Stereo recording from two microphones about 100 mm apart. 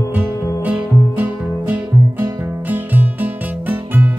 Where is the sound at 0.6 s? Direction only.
15° right (ahead or behind).